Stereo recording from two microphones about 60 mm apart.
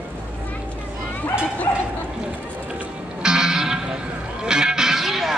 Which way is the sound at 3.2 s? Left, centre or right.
Centre.